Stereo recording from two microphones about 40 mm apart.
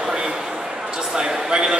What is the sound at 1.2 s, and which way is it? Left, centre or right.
Speech, centre.